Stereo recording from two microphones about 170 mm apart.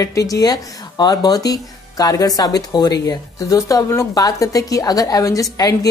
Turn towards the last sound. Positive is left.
turn(degrees=20)  # may be behind; listen again after turning